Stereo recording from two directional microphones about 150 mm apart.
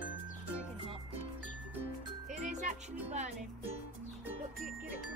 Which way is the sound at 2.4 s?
55° right (ahead or behind).